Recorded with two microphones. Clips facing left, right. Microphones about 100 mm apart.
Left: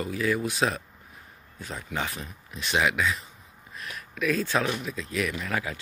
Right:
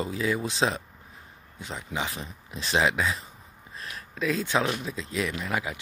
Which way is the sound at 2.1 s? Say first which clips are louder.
Right 1 dB; 30° right (ahead or behind).